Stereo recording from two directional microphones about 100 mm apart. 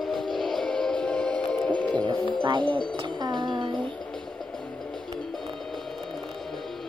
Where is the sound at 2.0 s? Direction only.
50° right (ahead or behind).